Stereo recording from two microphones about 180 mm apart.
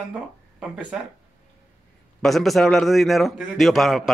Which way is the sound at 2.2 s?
Centre (ahead or behind).